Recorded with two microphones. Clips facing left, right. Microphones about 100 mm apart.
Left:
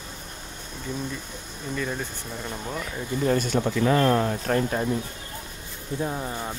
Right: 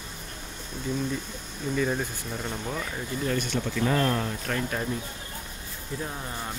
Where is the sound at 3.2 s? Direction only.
40° left (ahead or behind).